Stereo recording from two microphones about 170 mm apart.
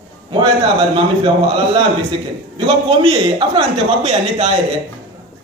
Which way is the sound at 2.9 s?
35° right (ahead or behind).